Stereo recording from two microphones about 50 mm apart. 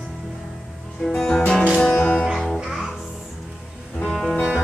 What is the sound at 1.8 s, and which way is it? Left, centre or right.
Music, left.